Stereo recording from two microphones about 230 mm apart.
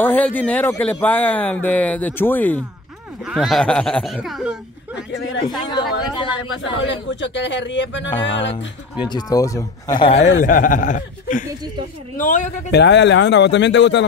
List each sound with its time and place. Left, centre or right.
0.0 s speech: centre
5.7 s speech: centre
6.4 s speech: left
9.0 s speech: centre
10.4 s speech: left
12.7 s speech: left